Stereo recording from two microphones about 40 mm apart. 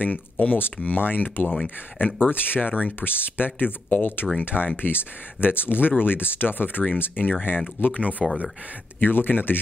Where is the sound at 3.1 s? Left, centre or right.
Left.